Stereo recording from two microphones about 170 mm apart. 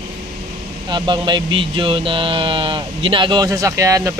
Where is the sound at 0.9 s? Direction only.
25° right (ahead or behind).